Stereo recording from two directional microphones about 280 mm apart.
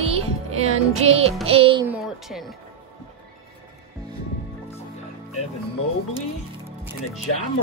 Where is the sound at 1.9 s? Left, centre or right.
Centre.